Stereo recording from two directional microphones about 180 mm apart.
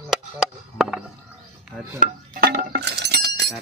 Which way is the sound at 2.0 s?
50° right (ahead or behind).